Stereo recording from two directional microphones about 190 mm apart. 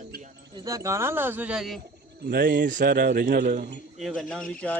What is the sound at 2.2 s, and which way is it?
A man's voice, 60° right (ahead or behind).